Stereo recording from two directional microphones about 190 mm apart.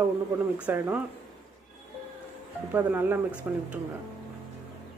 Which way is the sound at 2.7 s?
10° right (ahead or behind).